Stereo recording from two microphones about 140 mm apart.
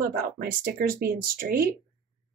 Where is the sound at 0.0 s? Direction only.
90° right.